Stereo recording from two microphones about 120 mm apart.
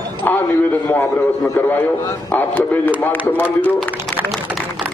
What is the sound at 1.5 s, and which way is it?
A man's voice, 20° left (ahead or behind).